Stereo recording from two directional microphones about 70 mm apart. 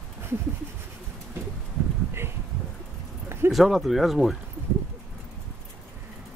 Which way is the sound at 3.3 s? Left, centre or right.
Right.